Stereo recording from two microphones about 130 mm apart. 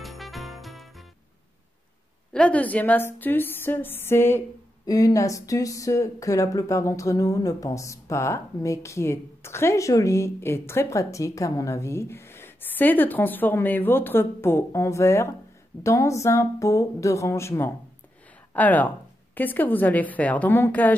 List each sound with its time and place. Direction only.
0.0 s jingle bell: centre (ahead or behind)
2.3 s a woman's voice: 10° left (ahead or behind)